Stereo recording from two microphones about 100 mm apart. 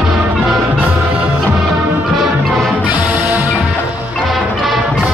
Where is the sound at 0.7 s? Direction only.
20° right (ahead or behind).